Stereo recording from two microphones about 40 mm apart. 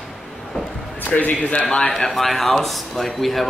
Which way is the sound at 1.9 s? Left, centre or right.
Centre.